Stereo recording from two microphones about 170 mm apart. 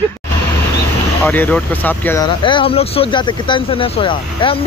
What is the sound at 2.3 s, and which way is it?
Speech, 30° left (ahead or behind).